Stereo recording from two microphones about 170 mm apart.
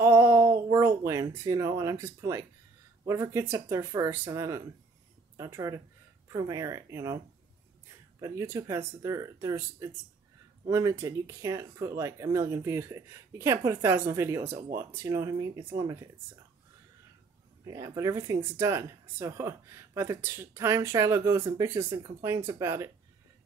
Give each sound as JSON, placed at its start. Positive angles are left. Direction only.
{"t": 0.0, "sound": "a sound", "side_deg": -15}
{"t": 1.3, "sound": "speech", "side_deg": -20}
{"t": 8.2, "sound": "speech", "side_deg": -15}
{"t": 17.6, "sound": "speech", "side_deg": -15}